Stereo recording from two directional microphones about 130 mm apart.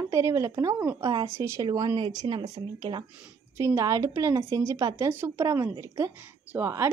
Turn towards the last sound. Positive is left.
turn(degrees=-20)  # may be behind; listen again after turning